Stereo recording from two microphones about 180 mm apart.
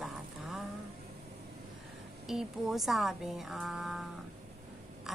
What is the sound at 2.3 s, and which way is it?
Speech, centre (ahead or behind).